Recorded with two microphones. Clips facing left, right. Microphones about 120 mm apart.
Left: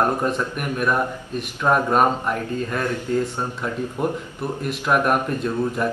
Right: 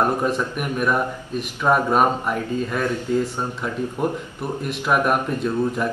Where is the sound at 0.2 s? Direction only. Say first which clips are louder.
Right 1 dB; 5° right (ahead or behind).